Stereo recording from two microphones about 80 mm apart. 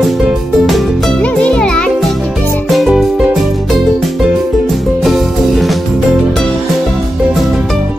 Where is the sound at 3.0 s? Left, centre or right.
Centre.